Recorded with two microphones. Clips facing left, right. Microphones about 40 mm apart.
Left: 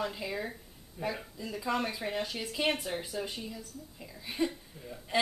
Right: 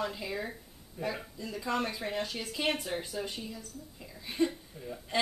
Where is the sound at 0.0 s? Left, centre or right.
Centre.